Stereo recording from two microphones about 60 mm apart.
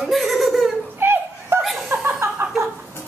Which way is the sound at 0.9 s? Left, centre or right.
Right.